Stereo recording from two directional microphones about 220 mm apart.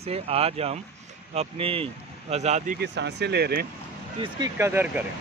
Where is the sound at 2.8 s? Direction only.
50° right (ahead or behind).